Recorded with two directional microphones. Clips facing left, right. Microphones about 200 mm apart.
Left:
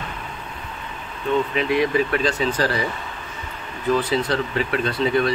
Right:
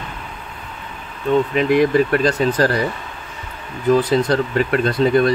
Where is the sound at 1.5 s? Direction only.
45° right (ahead or behind).